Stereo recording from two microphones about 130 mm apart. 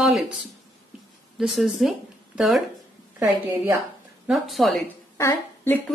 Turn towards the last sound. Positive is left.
turn(degrees=20)  # may be behind; listen again after turning